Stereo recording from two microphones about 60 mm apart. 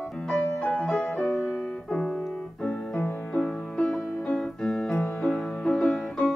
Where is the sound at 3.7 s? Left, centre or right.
Centre.